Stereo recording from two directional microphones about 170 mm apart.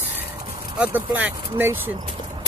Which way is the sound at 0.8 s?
10° right (ahead or behind).